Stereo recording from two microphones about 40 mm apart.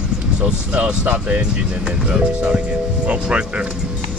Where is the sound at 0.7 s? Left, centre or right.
Right.